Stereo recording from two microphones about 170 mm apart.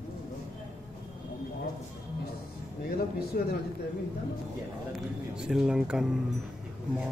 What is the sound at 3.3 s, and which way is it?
Speech, 60° left (ahead or behind).